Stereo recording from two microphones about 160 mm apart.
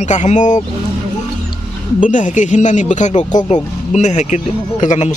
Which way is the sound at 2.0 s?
50° left (ahead or behind).